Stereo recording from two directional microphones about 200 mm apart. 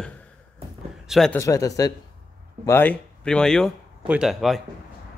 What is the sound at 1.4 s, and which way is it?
A man's voice, 15° left (ahead or behind).